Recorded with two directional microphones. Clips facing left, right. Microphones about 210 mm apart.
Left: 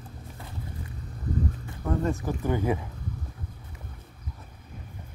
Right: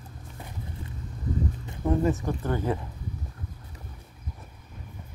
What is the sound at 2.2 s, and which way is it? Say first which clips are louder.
Speech: left 1 dB; 10° left (ahead or behind).